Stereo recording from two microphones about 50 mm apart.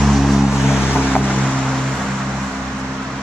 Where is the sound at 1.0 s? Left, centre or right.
Left.